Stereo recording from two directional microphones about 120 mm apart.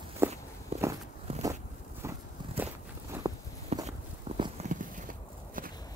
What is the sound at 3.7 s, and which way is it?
Walk, 60° right (ahead or behind).